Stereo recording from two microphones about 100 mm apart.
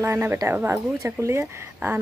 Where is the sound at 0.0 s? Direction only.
25° right (ahead or behind).